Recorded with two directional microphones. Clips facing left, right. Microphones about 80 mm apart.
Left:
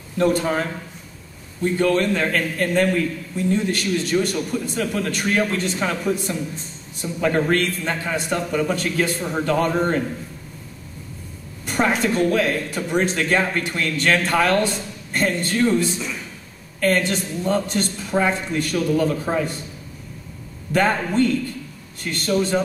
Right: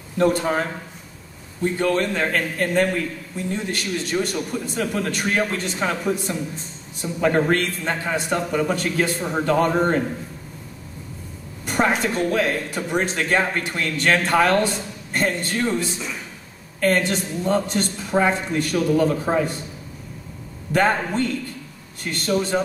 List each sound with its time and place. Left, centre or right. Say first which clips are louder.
0.2 s speech: even; right
11.6 s speech: even; centre
20.7 s a man's voice: left 1 dB; right